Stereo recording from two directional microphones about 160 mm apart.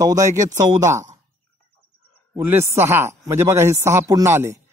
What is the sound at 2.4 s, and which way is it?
Speech, 15° right (ahead or behind).